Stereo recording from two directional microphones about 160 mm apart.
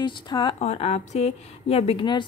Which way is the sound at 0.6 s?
40° left (ahead or behind).